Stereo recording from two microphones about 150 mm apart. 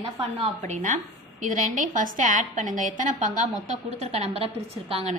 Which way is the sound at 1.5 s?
60° right (ahead or behind).